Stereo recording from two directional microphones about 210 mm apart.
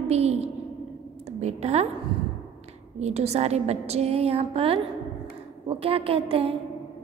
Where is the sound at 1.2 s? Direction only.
30° right (ahead or behind).